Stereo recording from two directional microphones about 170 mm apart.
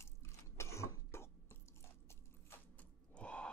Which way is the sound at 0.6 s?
15° left (ahead or behind).